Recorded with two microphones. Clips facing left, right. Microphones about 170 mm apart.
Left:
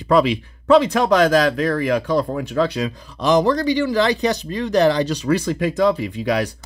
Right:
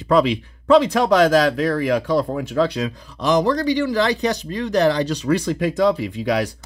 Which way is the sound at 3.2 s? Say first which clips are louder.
Left 2 dB; 25° left (ahead or behind).